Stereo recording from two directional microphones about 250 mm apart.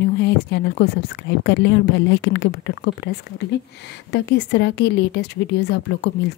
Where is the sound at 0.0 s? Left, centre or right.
Left.